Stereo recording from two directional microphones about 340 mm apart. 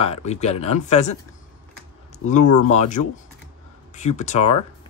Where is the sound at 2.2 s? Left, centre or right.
Left.